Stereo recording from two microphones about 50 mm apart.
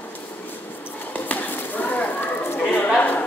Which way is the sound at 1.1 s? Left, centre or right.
Left.